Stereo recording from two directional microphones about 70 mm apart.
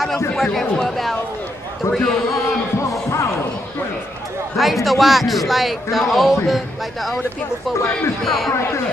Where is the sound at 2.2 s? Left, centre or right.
Left.